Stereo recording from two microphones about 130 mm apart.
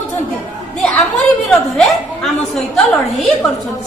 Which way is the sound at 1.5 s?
5° left (ahead or behind).